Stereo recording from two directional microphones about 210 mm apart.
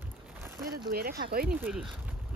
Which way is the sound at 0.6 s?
45° right (ahead or behind).